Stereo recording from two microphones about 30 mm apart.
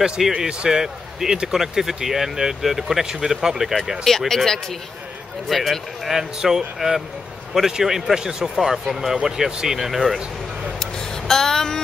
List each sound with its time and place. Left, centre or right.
0.2 s speech: centre
0.7 s speech: centre
4.1 s speech: centre
5.5 s speech: centre
6.0 s a man's voice: centre
8.5 s speech: centre
10.8 s a sound: centre